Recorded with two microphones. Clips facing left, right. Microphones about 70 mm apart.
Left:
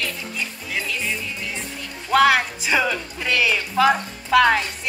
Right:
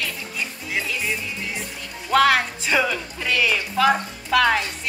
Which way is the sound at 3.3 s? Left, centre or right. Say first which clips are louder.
Left 1 dB; centre.